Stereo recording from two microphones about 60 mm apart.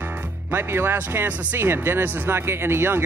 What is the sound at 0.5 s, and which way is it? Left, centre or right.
Speech, right.